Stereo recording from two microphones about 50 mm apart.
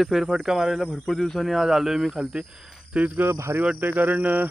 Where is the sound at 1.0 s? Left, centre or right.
Centre.